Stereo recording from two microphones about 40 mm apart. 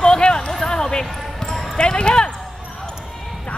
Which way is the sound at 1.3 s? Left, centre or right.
Centre.